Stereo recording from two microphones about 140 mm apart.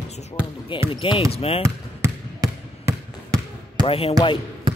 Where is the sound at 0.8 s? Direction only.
40° left (ahead or behind).